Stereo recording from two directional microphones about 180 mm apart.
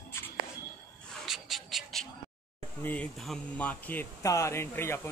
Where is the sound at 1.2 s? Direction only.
Centre (ahead or behind).